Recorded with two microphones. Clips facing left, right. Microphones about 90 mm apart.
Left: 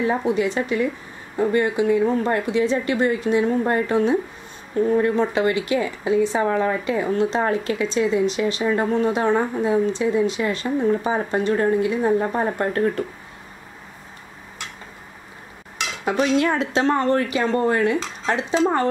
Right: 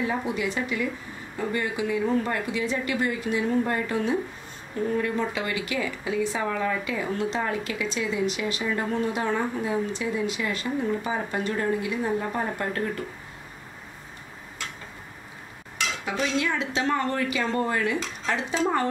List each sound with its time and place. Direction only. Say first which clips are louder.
0.0 s speech: left 7 dB; 30° left (ahead or behind)
16.1 s a woman's voice: left 8 dB; 50° left (ahead or behind)
17.4 s speech: left 6 dB; 25° left (ahead or behind)